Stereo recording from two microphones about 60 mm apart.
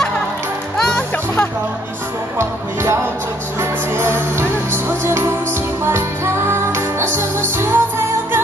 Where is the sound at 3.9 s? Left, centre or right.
Right.